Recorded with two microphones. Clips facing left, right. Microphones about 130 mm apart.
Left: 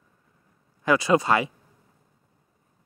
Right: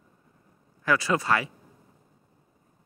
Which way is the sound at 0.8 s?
20° left (ahead or behind).